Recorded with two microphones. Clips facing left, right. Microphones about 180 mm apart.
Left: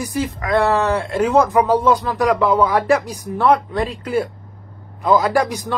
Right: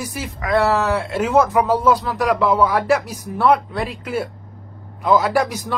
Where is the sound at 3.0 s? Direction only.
5° right (ahead or behind).